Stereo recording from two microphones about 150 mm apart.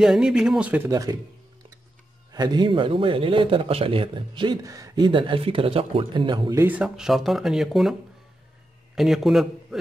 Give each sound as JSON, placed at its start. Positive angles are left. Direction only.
{"t": 0.0, "sound": "speech", "side_deg": -5}
{"t": 0.8, "sound": "speech", "side_deg": -25}
{"t": 2.3, "sound": "a man's voice", "side_deg": -25}
{"t": 6.6, "sound": "speech", "side_deg": -10}
{"t": 8.9, "sound": "a man's voice", "side_deg": 0}